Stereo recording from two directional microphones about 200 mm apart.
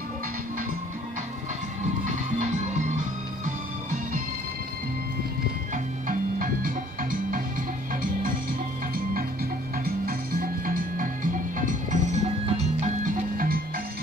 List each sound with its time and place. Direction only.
3.4 s music: 40° right (ahead or behind)
6.0 s music: 45° right (ahead or behind)